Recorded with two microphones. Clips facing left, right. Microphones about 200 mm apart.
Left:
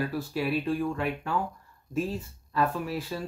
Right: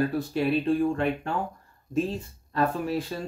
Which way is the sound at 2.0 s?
5° left (ahead or behind).